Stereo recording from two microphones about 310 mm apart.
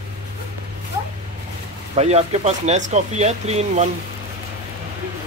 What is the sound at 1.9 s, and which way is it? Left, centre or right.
Speech, centre.